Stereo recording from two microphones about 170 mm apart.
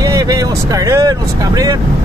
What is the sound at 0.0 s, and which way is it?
Speech, 20° right (ahead or behind).